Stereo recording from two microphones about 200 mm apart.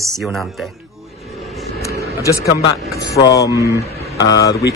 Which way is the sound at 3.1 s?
15° left (ahead or behind).